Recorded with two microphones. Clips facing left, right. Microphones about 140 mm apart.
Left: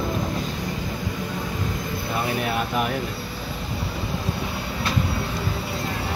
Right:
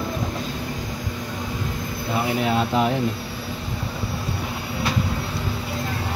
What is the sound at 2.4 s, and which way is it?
Speech, 25° right (ahead or behind).